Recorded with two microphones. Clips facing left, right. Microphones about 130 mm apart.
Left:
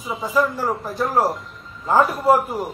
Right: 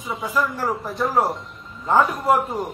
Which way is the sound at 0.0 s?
Centre (ahead or behind).